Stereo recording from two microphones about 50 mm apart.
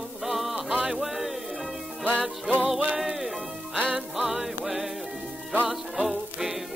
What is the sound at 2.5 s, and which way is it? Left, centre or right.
Music, right.